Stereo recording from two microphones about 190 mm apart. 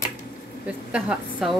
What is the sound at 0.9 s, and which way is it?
Speech, 5° right (ahead or behind).